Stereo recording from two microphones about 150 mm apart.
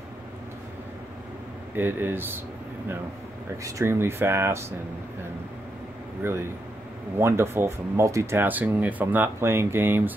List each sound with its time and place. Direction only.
1.8 s speech: 15° right (ahead or behind)
3.6 s speech: 20° right (ahead or behind)
6.2 s speech: 20° right (ahead or behind)